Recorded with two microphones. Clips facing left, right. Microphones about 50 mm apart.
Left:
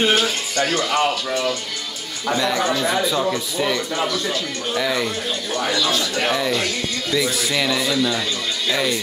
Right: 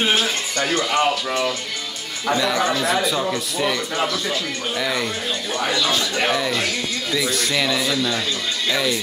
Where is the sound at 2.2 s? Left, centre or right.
Centre.